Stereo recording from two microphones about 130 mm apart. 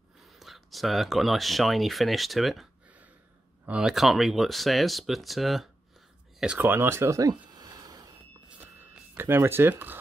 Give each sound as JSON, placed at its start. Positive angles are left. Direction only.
{"t": 0.2, "sound": "speech", "side_deg": 0}
{"t": 6.4, "sound": "speech", "side_deg": -10}
{"t": 8.5, "sound": "a sound", "side_deg": -10}